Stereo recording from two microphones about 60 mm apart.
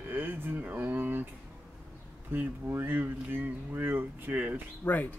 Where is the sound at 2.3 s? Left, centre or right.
Right.